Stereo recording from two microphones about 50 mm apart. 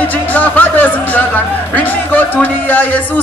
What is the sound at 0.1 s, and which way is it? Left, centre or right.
Speech, left.